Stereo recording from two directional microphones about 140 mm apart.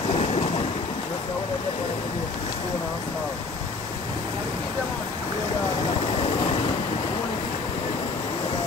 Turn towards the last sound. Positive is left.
turn(degrees=40)  # may be behind; listen again after turning